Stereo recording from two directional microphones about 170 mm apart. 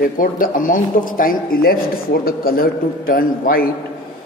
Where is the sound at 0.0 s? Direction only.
55° left (ahead or behind).